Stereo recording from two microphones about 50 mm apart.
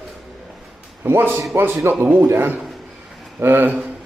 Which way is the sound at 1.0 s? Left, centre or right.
Right.